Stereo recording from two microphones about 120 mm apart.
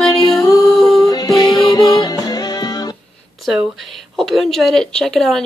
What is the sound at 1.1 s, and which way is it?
Music, 35° left (ahead or behind).